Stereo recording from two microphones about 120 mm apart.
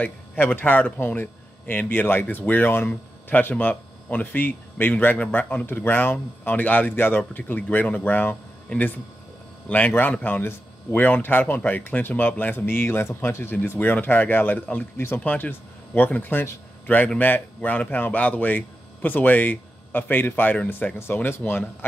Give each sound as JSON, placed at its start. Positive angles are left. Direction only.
{"t": 0.0, "sound": "speech", "side_deg": 15}